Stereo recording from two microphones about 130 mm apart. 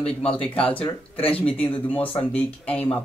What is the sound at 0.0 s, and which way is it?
Speech, 50° left (ahead or behind).